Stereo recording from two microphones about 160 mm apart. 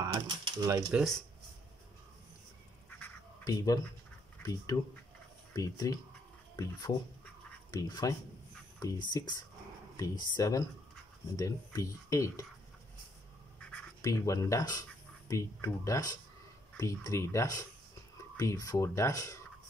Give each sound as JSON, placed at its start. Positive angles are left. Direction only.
{"t": 0.0, "sound": "speech", "side_deg": -25}
{"t": 0.8, "sound": "speech", "side_deg": 0}
{"t": 3.4, "sound": "speech", "side_deg": 25}
{"t": 14.0, "sound": "speech", "side_deg": 20}